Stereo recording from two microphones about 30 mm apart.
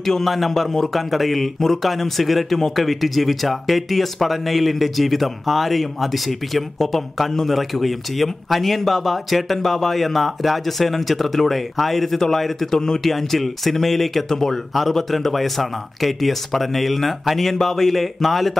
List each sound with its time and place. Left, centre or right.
0.0 s speech: centre
12.7 s speech: centre
13.0 s speech: centre